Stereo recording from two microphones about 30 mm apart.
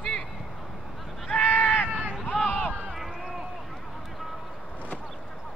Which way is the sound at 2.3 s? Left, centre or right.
Left.